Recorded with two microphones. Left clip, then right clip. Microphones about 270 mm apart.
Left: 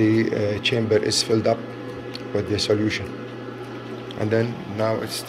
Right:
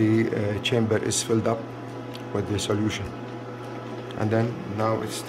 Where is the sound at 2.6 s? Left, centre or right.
Centre.